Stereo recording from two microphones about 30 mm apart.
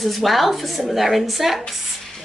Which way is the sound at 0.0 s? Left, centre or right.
Centre.